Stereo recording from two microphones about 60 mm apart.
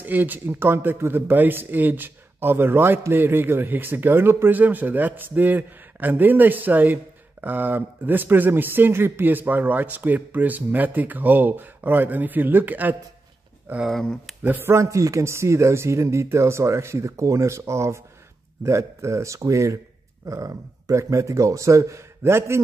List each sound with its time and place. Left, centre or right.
0.0 s speech: right
4.5 s speech: right
14.4 s speech: right
14.7 s a man's voice: right
20.2 s a man's voice: right